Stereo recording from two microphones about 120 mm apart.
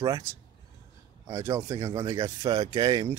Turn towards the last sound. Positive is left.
turn(degrees=-30)  # may be behind; listen again after turning